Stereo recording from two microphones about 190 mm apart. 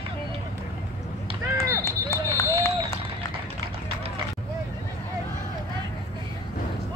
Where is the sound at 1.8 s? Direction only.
15° left (ahead or behind).